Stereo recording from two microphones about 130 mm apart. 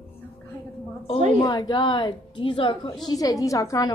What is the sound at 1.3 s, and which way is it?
A woman's voice, 45° left (ahead or behind).